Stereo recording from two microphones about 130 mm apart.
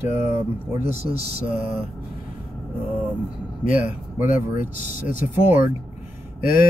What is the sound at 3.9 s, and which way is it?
Mantra, 15° right (ahead or behind).